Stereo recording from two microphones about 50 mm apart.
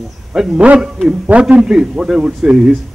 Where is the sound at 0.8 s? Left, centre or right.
Centre.